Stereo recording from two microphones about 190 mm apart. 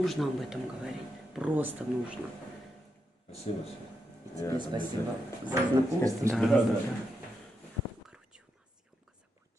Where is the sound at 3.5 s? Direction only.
30° left (ahead or behind).